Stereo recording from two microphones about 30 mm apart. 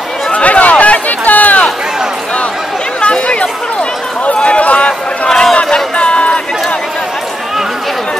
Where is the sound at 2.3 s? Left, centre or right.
Left.